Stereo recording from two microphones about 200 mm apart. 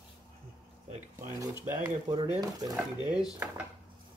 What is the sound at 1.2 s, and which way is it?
Speech, 15° right (ahead or behind).